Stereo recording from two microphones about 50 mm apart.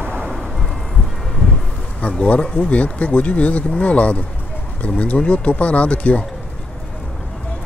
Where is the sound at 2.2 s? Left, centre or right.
Left.